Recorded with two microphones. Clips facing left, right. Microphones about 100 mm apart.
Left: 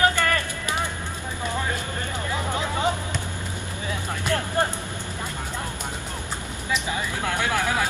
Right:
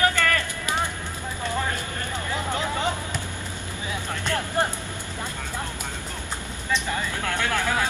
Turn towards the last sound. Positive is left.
turn(degrees=15)  # may be behind; listen again after turning